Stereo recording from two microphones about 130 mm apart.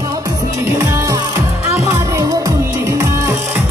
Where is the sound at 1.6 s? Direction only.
25° right (ahead or behind).